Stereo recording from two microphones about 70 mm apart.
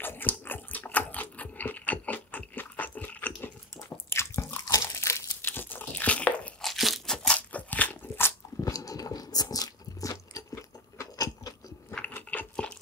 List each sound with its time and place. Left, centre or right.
0.0 s dog: left
4.1 s biting: left
4.8 s crumpling: left
5.4 s a sound: left
6.6 s crunch: centre
7.2 s crunch: centre
8.5 s biting: left
11.1 s keys jangling: left
12.0 s crunch: left